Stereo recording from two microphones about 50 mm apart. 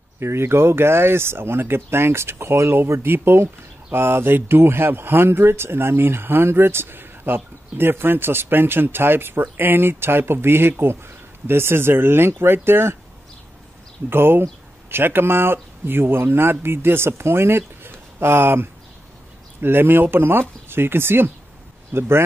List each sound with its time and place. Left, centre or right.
0.2 s speech: right
14.0 s speech: right